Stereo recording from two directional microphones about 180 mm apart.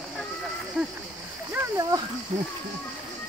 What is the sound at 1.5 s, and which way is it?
Speech, 15° right (ahead or behind).